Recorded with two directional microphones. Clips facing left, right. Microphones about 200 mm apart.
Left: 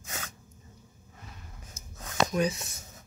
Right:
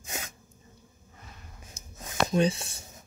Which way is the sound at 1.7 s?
10° right (ahead or behind).